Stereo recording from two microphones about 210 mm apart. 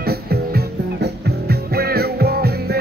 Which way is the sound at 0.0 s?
45° right (ahead or behind).